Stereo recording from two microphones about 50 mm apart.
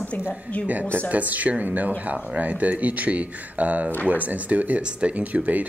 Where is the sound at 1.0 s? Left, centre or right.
Right.